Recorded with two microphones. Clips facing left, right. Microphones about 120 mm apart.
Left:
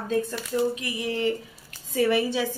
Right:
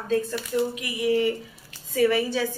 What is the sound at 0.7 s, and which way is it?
Speech, 25° left (ahead or behind).